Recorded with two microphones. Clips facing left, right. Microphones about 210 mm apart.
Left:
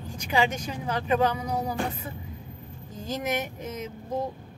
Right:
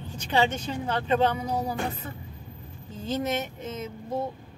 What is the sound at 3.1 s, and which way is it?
Speech, 30° right (ahead or behind).